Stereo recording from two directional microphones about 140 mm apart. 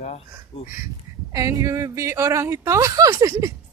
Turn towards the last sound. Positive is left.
turn(degrees=-20)  # may be behind; listen again after turning